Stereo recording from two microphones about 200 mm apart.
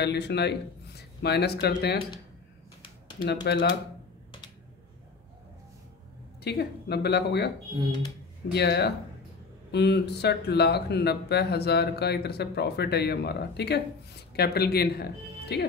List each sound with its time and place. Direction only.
0.0 s a man's voice: 55° left (ahead or behind)
3.4 s speech: 55° left (ahead or behind)
6.4 s speech: 55° left (ahead or behind)
8.5 s speech: 55° left (ahead or behind)